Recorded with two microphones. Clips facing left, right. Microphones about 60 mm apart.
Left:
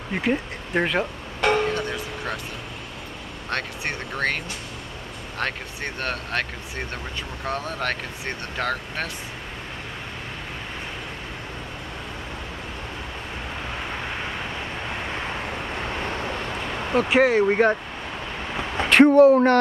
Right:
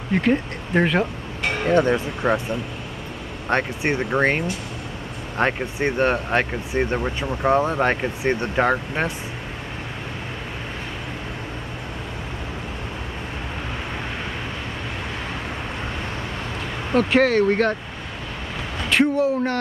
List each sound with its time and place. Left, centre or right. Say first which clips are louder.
0.1 s speech: right 4 dB; centre
1.7 s speech: right 9 dB; right
3.4 s speech: right 7 dB; right
16.9 s speech: right 1 dB; centre
18.9 s speech: left 6 dB; left